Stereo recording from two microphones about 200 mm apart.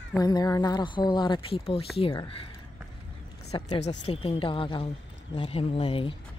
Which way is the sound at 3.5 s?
35° left (ahead or behind).